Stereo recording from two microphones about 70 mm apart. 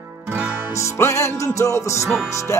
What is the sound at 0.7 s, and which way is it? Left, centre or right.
Music, left.